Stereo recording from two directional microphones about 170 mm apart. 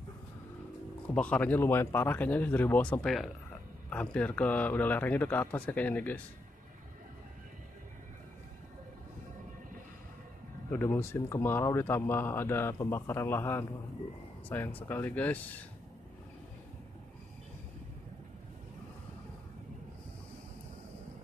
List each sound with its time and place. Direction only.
1.1 s speech: 5° left (ahead or behind)
10.7 s speech: 15° left (ahead or behind)